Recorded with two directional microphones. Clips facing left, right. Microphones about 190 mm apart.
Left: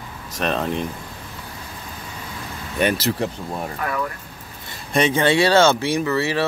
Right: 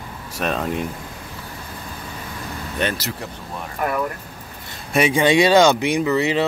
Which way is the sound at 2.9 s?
30° left (ahead or behind).